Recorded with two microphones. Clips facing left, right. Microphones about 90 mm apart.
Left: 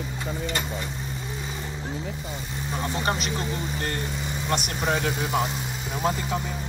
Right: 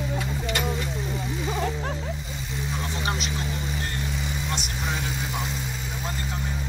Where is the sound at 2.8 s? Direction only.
40° left (ahead or behind).